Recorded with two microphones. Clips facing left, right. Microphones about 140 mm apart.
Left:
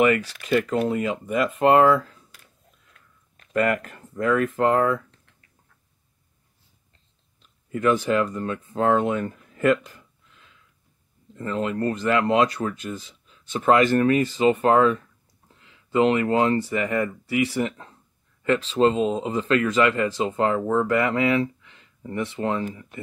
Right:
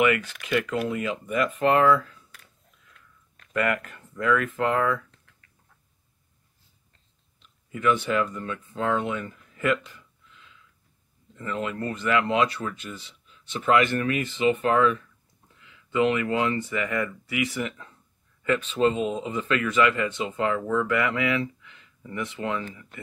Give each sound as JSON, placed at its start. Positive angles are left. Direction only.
{"t": 0.0, "sound": "speech", "side_deg": 35}
{"t": 3.3, "sound": "speech", "side_deg": 35}
{"t": 7.7, "sound": "speech", "side_deg": 40}